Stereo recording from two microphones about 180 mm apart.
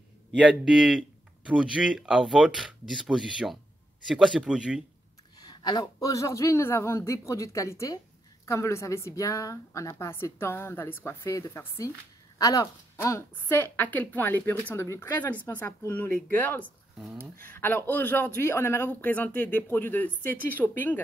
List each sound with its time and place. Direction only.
0.4 s speech: centre (ahead or behind)
5.4 s a man's voice: 25° left (ahead or behind)
17.0 s speech: 5° right (ahead or behind)
17.5 s a man's voice: 10° left (ahead or behind)